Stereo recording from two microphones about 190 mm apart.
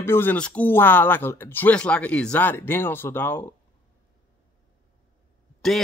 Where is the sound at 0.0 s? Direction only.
10° left (ahead or behind).